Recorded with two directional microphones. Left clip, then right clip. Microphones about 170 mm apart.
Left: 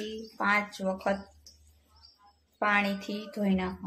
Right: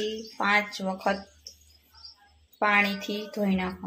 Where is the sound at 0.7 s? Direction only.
20° right (ahead or behind).